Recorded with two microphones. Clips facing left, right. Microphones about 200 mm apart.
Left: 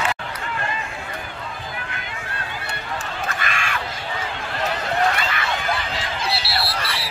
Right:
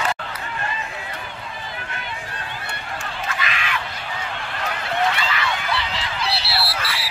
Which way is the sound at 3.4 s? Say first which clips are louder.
Even; 50° left (ahead or behind).